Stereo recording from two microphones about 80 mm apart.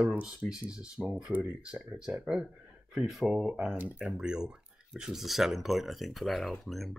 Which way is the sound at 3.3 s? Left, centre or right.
Centre.